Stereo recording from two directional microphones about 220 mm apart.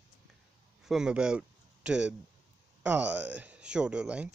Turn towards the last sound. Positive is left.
turn(degrees=-5)  # may be behind; listen again after turning